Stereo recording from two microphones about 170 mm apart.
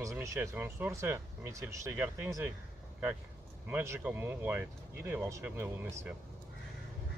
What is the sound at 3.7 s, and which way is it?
Speech, 15° right (ahead or behind).